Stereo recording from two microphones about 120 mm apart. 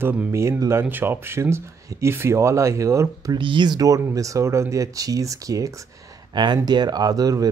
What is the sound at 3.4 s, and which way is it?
Speech, 40° right (ahead or behind).